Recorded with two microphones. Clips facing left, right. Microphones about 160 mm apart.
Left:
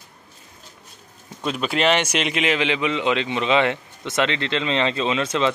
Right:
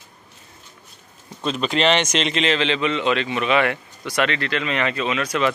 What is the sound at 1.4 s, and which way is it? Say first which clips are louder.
A man's voice: right 1 dB; 10° left (ahead or behind).